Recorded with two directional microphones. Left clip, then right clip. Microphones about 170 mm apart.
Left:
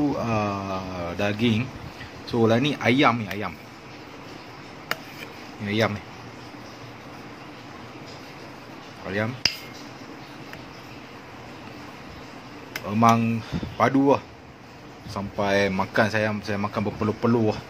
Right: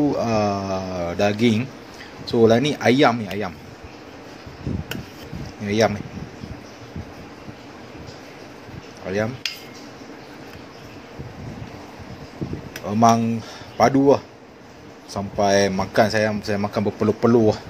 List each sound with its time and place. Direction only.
0.0 s speech: 15° right (ahead or behind)
5.7 s speech: 15° right (ahead or behind)
9.0 s dishes: 10° right (ahead or behind)
12.8 s speech: 10° right (ahead or behind)
16.7 s speech: 20° right (ahead or behind)